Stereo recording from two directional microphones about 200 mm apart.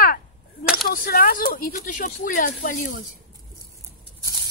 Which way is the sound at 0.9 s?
45° left (ahead or behind).